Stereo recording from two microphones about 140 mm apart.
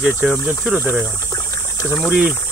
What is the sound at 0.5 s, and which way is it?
Speech, 10° right (ahead or behind).